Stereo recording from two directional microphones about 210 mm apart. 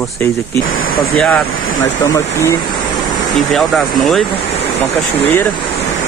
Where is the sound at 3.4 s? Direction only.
Centre (ahead or behind).